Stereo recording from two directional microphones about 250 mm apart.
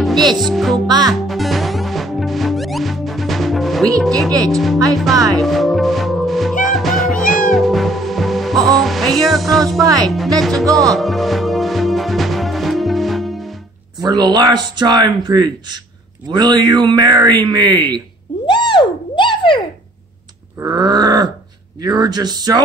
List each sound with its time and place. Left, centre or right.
0.0 s music: centre
0.4 s speech: centre
0.8 s speech: centre
1.1 s music: centre
4.3 s speech: centre
4.9 s speech: centre
5.4 s music: centre
10.0 s speech: centre
10.9 s music: centre
14.0 s speech: centre
18.5 s a sound: centre
20.5 s speech: centre